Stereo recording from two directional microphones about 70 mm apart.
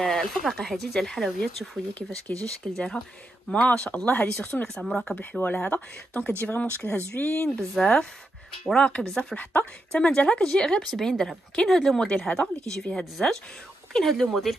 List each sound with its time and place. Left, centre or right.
0.0 s speech: centre
2.3 s a woman's voice: centre
4.7 s a woman's voice: centre
5.4 s speech: left
7.7 s a woman's voice: centre
9.4 s a woman's voice: left; by 14.6 s centre